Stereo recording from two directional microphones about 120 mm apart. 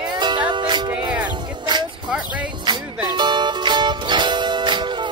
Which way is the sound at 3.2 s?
40° right (ahead or behind).